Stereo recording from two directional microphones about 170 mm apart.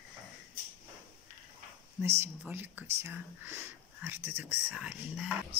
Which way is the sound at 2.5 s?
10° right (ahead or behind).